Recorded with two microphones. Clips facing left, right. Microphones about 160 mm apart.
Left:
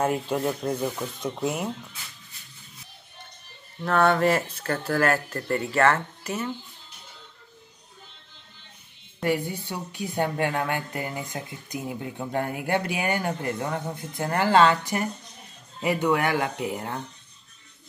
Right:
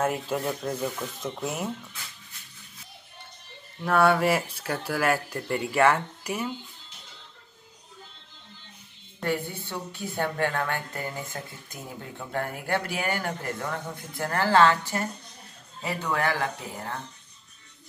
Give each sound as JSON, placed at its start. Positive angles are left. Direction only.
{"t": 0.0, "sound": "speech", "side_deg": 0}
{"t": 3.8, "sound": "speech", "side_deg": -10}
{"t": 9.2, "sound": "speech", "side_deg": 15}